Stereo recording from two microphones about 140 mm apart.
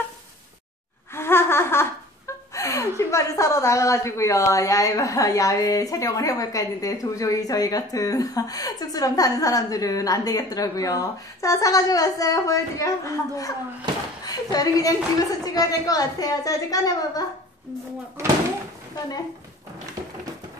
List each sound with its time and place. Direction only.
1.1 s speech: 15° left (ahead or behind)